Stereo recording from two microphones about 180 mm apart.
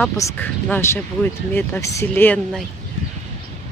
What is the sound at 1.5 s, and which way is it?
Speech, 15° left (ahead or behind).